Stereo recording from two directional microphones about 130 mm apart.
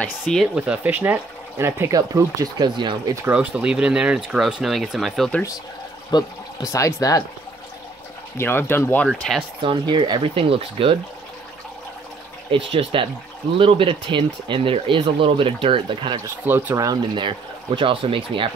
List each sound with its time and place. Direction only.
0.0 s speech: 5° left (ahead or behind)
0.6 s speech: 10° right (ahead or behind); by 3.0 s 35° right (ahead or behind)
3.3 s speech: 10° right (ahead or behind)
6.1 s speech: 25° left (ahead or behind)
8.4 s speech: 15° left (ahead or behind)
9.6 s speech: 40° right (ahead or behind)
12.4 s speech: 40° right (ahead or behind)
16.4 s speech: 15° right (ahead or behind); by 18.5 s 40° right (ahead or behind)